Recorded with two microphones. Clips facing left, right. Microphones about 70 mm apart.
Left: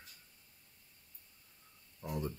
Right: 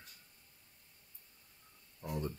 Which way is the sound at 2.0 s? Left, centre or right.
Centre.